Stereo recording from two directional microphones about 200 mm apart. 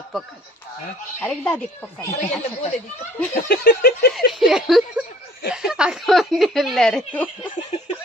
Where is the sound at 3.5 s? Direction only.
50° left (ahead or behind).